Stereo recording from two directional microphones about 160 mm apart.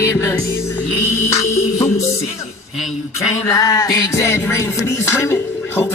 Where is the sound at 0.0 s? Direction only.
20° left (ahead or behind).